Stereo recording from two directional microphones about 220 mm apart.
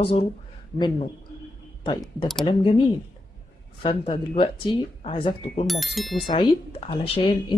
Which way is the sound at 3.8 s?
20° left (ahead or behind).